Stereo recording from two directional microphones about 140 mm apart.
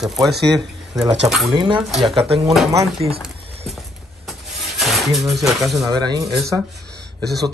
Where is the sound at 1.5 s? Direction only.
35° right (ahead or behind).